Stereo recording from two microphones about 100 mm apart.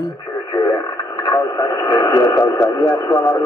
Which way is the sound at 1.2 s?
40° left (ahead or behind).